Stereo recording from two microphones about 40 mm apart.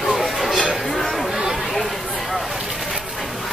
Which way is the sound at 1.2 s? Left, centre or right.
Centre.